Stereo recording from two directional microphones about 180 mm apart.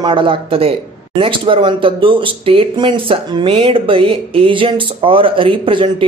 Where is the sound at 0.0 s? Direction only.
30° right (ahead or behind).